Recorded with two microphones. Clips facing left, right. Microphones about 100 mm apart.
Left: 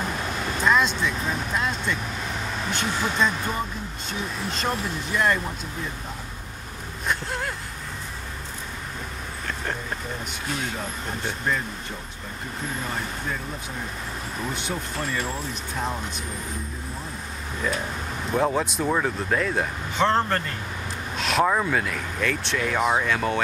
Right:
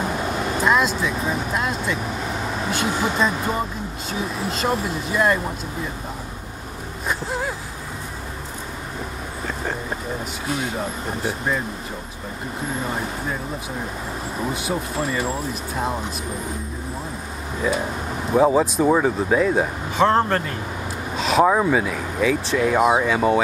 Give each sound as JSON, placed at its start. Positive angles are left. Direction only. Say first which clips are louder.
{"t": 0.0, "sound": "vehicle", "louder": "right 5 dB", "side_deg": -15}
{"t": 0.4, "sound": "speech", "louder": "right 2 dB", "side_deg": -10}
{"t": 7.1, "sound": "speech", "louder": "right 3 dB", "side_deg": -5}
{"t": 10.6, "sound": "speech", "louder": "right 5 dB", "side_deg": -5}
{"t": 12.8, "sound": "speech", "louder": "right 4 dB", "side_deg": -15}
{"t": 14.4, "sound": "speech", "louder": "right 5 dB", "side_deg": -5}
{"t": 17.6, "sound": "speech", "louder": "right 5 dB", "side_deg": -5}